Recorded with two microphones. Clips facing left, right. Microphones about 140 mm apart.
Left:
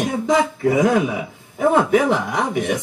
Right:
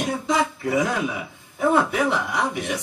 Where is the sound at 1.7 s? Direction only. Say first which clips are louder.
Left 7 dB; 50° left (ahead or behind).